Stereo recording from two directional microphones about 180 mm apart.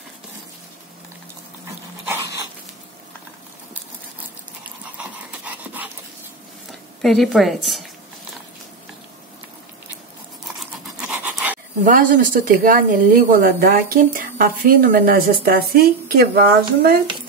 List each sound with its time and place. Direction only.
4.9 s dog: 10° right (ahead or behind)
7.0 s a woman's voice: centre (ahead or behind)
11.0 s pant: 5° right (ahead or behind)
11.8 s speech: 50° right (ahead or behind)